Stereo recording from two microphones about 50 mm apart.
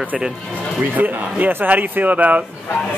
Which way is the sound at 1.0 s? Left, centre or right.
Right.